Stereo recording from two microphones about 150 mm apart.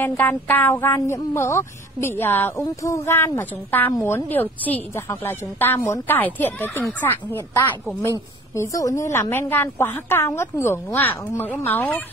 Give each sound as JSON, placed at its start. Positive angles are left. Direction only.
{"t": 0.0, "sound": "a woman's voice", "side_deg": 10}